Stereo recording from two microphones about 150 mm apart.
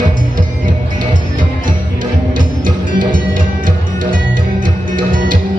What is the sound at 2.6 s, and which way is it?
Music, 65° right (ahead or behind).